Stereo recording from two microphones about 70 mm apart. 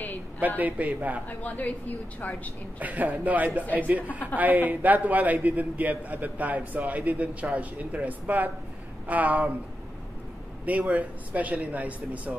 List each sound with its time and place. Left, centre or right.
0.6 s a man's voice: right
1.4 s a woman's voice: left
2.8 s a man's voice: right
10.6 s a man's voice: right